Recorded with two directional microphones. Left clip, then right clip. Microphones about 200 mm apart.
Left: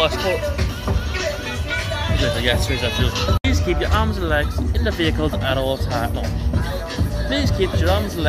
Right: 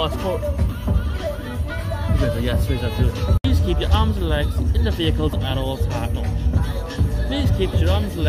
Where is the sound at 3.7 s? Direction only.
20° right (ahead or behind).